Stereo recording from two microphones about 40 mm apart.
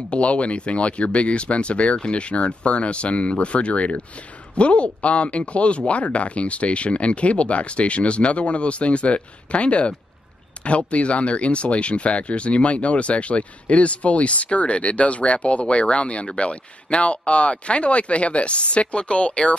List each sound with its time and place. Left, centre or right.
0.1 s speech: left